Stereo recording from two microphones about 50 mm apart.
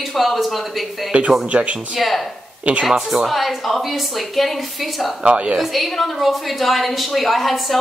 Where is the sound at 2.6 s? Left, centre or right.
Right.